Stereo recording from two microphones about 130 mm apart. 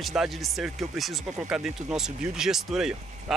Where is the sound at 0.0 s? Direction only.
Centre (ahead or behind).